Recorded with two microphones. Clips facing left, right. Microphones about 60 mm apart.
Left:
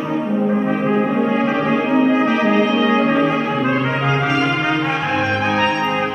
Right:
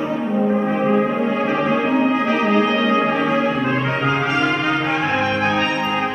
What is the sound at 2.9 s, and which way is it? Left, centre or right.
Music, centre.